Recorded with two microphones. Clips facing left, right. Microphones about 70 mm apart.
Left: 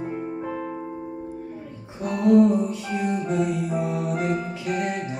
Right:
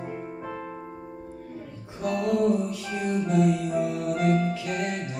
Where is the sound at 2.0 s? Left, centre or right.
Left.